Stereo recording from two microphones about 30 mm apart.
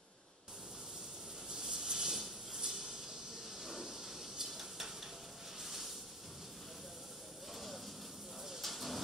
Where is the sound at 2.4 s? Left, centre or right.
Centre.